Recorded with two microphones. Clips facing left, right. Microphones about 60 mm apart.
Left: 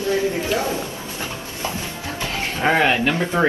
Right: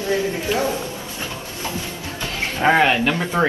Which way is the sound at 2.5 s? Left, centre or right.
Right.